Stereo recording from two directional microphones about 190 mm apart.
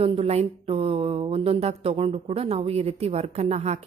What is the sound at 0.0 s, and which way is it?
Speech, 30° right (ahead or behind).